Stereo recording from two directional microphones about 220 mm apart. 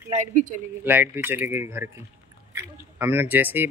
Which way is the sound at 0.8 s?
10° right (ahead or behind).